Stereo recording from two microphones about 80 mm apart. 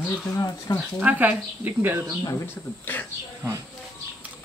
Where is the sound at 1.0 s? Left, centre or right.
Centre.